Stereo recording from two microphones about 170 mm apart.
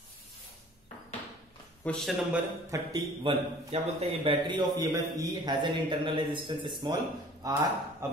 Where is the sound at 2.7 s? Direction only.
25° right (ahead or behind).